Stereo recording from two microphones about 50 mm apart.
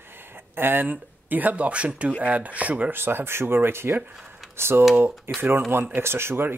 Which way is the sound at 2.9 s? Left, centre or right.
Right.